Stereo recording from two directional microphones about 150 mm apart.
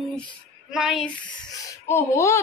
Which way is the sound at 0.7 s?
5° right (ahead or behind).